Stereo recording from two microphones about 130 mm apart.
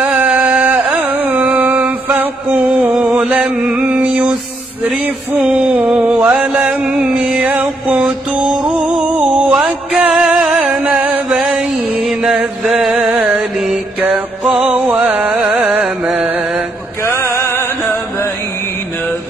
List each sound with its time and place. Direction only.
0.0 s music: 10° right (ahead or behind)
3.6 s a sound: 10° right (ahead or behind)
4.8 s mantra: 10° right (ahead or behind)
6.3 s music: 5° right (ahead or behind)
9.0 s music: 15° right (ahead or behind)
11.2 s a sound: centre (ahead or behind)
12.1 s chant: 5° right (ahead or behind)
12.6 s mantra: centre (ahead or behind)
14.8 s a sound: 10° right (ahead or behind)
15.6 s music: 10° right (ahead or behind)
17.0 s music: 20° left (ahead or behind)